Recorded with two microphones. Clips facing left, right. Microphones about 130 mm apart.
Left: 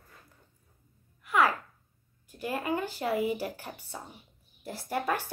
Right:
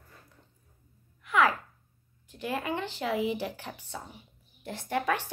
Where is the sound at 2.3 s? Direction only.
45° left (ahead or behind).